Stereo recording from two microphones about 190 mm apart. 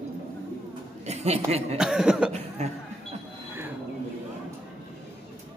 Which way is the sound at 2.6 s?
35° right (ahead or behind).